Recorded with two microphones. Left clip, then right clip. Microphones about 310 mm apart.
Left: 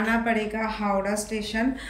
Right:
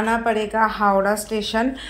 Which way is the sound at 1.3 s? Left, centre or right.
Right.